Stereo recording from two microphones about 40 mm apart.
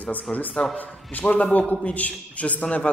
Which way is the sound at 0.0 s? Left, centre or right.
Left.